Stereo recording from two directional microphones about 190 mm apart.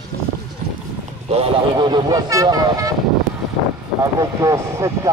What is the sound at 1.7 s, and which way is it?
Speech, 20° right (ahead or behind).